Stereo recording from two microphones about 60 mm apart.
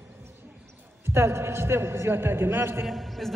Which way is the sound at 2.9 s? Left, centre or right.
Centre.